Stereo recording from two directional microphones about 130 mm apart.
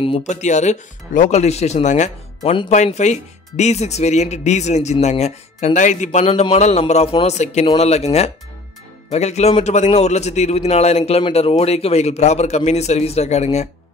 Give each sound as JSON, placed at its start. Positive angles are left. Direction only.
{"t": 0.2, "sound": "a man's voice", "side_deg": 65}
{"t": 1.3, "sound": "a man's voice", "side_deg": 55}